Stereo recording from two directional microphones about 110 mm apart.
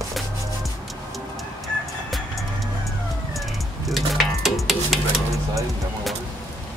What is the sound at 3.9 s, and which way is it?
Stir, centre (ahead or behind).